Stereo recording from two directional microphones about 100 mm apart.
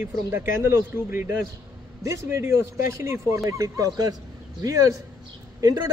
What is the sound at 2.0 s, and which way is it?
A man's voice, 30° right (ahead or behind).